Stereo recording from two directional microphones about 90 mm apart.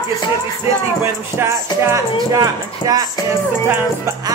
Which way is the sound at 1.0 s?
30° right (ahead or behind).